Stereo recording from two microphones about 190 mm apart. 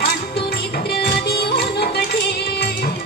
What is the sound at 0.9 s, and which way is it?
Music, 55° left (ahead or behind).